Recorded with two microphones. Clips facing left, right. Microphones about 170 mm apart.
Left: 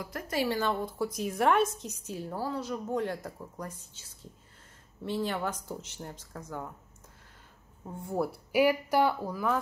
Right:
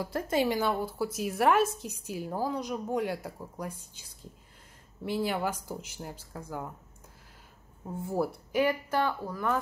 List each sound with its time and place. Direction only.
0.0 s speech: 25° right (ahead or behind)
0.6 s a woman's voice: 10° right (ahead or behind)
7.8 s speech: 5° right (ahead or behind); by 9.5 s 10° left (ahead or behind)